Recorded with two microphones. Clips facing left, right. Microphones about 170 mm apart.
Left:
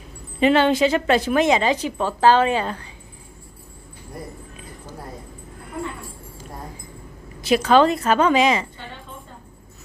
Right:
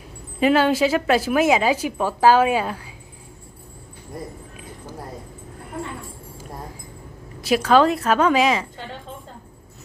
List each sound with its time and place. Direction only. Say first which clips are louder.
0.4 s a woman's voice: left 1 dB; 5° right (ahead or behind)
7.4 s a woman's voice: left 1 dB; centre (ahead or behind)